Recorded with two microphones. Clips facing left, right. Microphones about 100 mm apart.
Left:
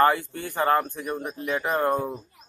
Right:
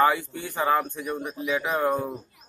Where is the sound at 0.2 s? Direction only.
55° left (ahead or behind).